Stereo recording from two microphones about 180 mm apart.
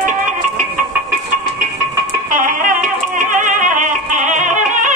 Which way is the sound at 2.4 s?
45° right (ahead or behind).